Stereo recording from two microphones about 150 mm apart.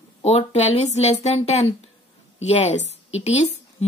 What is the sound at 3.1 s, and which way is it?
Speech, 45° left (ahead or behind).